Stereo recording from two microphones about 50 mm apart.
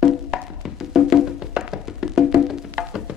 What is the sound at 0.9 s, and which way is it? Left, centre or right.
Music, centre.